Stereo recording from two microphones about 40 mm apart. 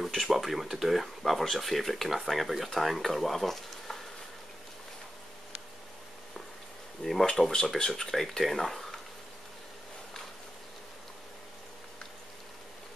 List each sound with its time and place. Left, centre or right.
0.0 s speech: centre
7.0 s speech: left
7.6 s speech: centre